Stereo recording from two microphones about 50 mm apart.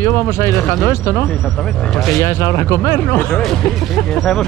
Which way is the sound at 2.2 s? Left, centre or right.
Left.